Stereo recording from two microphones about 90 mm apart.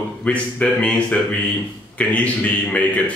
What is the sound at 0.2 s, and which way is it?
Speech, 15° left (ahead or behind).